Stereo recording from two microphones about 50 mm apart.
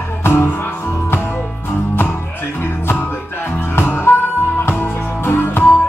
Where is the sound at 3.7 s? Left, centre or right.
Left.